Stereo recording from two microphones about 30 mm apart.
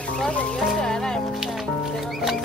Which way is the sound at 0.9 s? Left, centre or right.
Centre.